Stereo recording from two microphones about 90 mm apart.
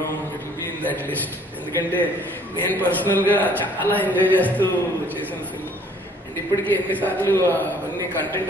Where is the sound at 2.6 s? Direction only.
20° left (ahead or behind).